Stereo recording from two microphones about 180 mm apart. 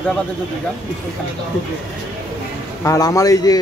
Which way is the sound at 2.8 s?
20° left (ahead or behind).